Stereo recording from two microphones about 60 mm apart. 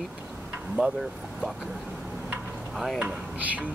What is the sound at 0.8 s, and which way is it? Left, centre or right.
Speech, centre.